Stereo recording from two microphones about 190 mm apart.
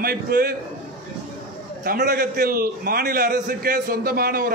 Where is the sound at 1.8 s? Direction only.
55° right (ahead or behind).